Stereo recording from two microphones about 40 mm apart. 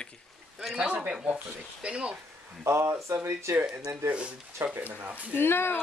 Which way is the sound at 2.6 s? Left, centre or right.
Right.